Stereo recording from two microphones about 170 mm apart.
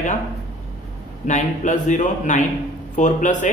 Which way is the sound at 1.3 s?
45° left (ahead or behind).